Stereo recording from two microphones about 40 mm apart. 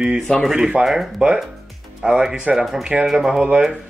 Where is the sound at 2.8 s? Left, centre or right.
Right.